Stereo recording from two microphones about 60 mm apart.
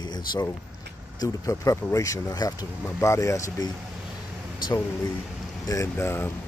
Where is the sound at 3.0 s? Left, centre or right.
Left.